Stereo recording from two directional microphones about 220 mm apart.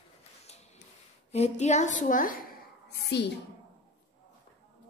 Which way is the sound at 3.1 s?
50° left (ahead or behind).